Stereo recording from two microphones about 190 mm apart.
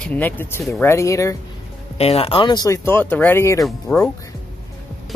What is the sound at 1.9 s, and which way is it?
Speech, 35° left (ahead or behind).